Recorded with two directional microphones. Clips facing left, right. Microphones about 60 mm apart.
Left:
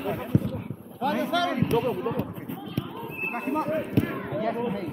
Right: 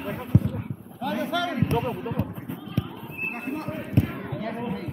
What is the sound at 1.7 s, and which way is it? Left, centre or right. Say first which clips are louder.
Speech: left 2 dB; right.